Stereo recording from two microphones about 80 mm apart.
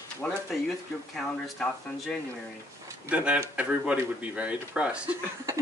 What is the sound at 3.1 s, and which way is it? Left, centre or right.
Speech, centre.